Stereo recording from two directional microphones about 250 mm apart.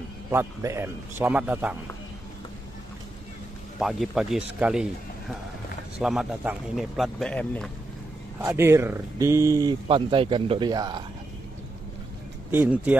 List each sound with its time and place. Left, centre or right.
0.3 s speech: centre
3.8 s a man's voice: centre
5.9 s a man's voice: centre
8.4 s speech: centre
12.4 s speech: centre